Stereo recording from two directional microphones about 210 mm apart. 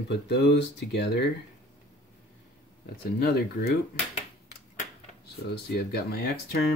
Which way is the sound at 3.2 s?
50° left (ahead or behind).